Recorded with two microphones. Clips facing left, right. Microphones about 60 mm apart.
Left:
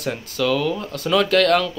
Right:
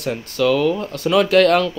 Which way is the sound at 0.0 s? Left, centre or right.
Centre.